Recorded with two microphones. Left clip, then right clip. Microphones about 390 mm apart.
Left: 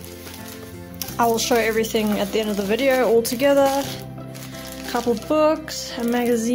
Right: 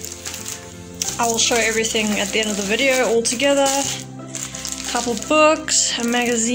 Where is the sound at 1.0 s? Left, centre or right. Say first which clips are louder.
Even; left.